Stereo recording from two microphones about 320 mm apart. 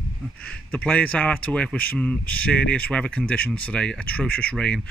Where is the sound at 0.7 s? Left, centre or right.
Centre.